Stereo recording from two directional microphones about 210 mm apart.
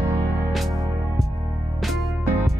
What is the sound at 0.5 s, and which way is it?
Music, centre (ahead or behind).